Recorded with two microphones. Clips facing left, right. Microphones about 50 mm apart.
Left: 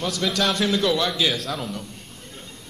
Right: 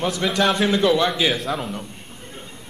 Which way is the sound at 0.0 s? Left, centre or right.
Right.